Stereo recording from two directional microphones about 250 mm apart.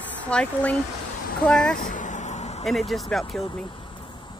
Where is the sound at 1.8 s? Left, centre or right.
Left.